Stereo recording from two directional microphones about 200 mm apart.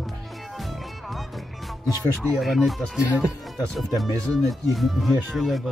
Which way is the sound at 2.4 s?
Centre (ahead or behind).